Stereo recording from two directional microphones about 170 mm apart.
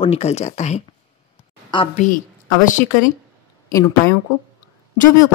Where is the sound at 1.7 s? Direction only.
25° left (ahead or behind).